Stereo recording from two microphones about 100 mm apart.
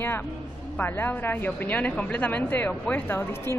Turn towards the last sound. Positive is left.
turn(degrees=20)  # may be behind; listen again after turning